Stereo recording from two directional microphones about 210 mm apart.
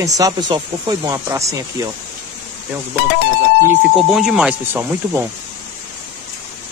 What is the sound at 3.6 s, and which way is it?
Speech, centre (ahead or behind).